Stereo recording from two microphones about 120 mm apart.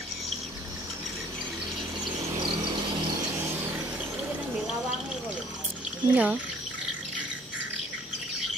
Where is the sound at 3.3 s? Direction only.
15° right (ahead or behind).